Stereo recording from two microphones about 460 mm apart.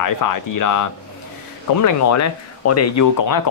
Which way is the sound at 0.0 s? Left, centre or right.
Left.